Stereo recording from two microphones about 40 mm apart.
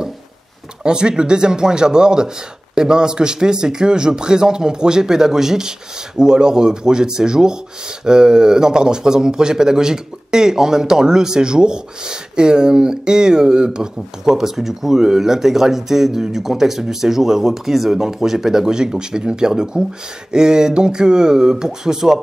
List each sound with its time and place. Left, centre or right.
0.8 s a man's voice: right
14.3 s a man's voice: centre